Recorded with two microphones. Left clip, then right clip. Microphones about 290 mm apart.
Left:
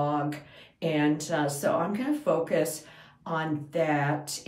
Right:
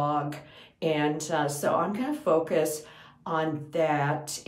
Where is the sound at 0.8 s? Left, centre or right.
Centre.